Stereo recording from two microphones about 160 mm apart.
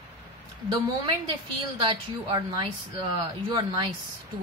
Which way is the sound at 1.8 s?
30° right (ahead or behind).